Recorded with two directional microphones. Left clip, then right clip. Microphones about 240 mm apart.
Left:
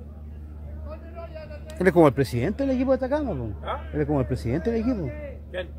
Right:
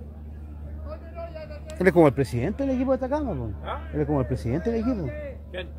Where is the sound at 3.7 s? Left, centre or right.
Centre.